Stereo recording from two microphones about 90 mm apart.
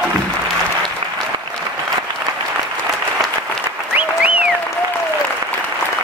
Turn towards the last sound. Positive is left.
turn(degrees=-15)  # may be behind; listen again after turning